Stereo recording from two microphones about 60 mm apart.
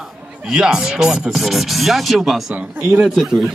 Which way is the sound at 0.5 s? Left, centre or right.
Centre.